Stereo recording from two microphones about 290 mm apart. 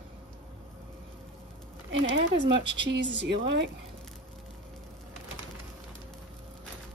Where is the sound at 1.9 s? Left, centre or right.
Right.